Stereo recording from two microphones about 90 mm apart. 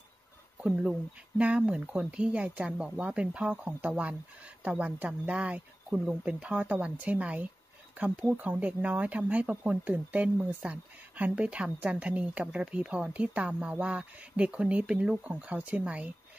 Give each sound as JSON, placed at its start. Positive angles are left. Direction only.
{"t": 0.6, "sound": "a woman's voice", "side_deg": -10}